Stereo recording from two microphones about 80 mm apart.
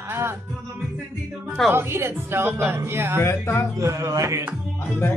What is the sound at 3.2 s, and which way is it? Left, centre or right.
Speech, left.